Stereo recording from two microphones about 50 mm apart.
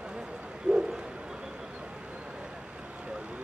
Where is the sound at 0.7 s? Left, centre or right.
Centre.